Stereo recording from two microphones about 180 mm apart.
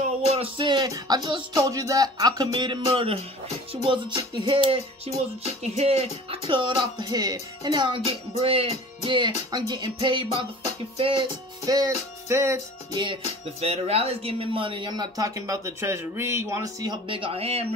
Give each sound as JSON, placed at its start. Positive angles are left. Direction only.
{"t": 0.4, "sound": "speech", "side_deg": -25}
{"t": 13.6, "sound": "speech", "side_deg": -35}